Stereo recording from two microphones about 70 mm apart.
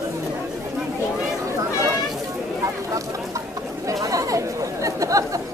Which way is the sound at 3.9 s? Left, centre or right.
Right.